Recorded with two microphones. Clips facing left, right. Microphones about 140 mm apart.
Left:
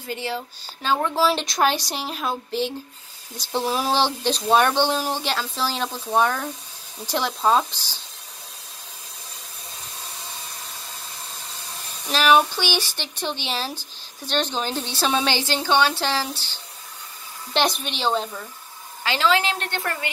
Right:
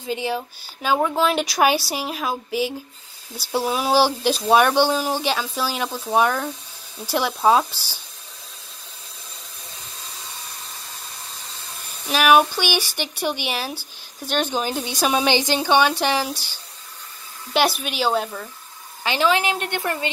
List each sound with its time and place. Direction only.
0.0 s speech: 15° right (ahead or behind)
12.1 s speech: 10° right (ahead or behind)
19.0 s speech: 15° right (ahead or behind)